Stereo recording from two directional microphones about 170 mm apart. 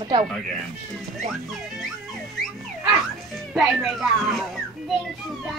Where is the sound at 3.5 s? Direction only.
Centre (ahead or behind).